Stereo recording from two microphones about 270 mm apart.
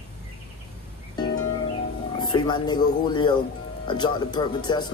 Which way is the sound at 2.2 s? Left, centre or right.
Centre.